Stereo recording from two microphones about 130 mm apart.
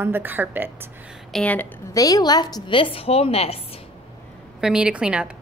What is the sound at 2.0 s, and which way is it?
A woman's voice, 30° left (ahead or behind).